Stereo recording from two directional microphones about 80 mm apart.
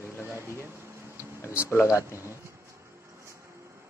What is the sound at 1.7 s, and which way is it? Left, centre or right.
Speech, left.